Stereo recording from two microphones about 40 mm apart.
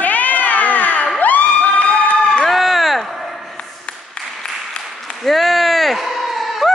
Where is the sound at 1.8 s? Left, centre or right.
Left.